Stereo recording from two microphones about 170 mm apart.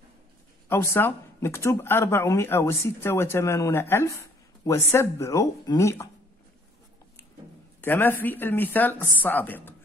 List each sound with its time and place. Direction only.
0.7 s speech: 15° left (ahead or behind)
7.8 s speech: 10° left (ahead or behind)